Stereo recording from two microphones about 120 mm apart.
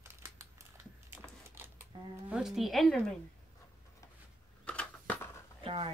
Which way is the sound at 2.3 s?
5° right (ahead or behind).